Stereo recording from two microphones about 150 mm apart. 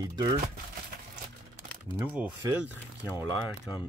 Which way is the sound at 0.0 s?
25° right (ahead or behind).